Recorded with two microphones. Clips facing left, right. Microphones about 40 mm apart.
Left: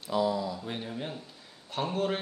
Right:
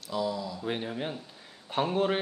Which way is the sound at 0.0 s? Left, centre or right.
Centre.